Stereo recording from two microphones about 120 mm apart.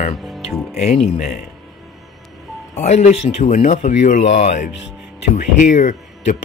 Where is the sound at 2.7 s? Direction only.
75° left (ahead or behind).